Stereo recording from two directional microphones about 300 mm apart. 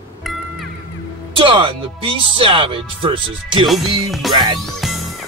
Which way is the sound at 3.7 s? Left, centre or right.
Centre.